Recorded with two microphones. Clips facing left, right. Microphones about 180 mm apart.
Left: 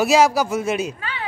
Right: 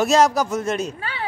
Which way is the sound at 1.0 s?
35° right (ahead or behind).